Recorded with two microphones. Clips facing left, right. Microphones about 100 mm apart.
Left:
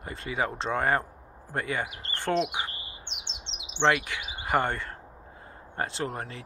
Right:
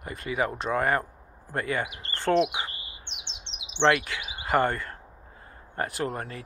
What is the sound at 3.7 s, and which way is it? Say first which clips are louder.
Speech: right 2 dB; 20° left (ahead or behind).